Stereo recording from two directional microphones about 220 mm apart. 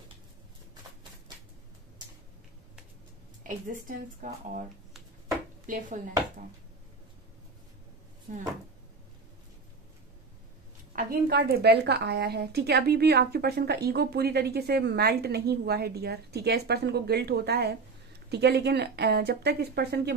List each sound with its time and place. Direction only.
3.4 s speech: 35° right (ahead or behind)
5.7 s speech: 35° right (ahead or behind)
10.9 s a woman's voice: 40° right (ahead or behind)